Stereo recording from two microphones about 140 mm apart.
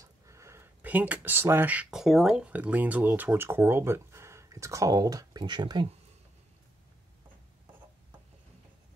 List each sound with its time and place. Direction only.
0.0 s speech: 20° right (ahead or behind)